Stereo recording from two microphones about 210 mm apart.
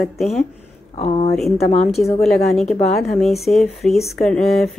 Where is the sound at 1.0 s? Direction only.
30° left (ahead or behind).